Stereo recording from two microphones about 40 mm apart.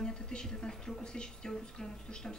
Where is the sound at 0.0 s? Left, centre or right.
Centre.